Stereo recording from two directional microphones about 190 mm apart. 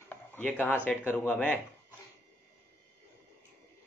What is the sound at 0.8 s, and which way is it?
Speech, 10° left (ahead or behind).